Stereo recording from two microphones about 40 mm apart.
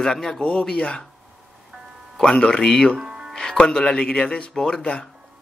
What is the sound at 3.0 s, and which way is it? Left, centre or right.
Music, centre.